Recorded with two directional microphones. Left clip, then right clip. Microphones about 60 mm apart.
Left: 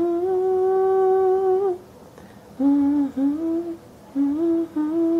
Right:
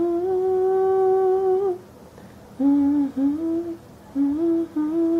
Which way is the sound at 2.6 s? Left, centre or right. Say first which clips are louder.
Even; centre.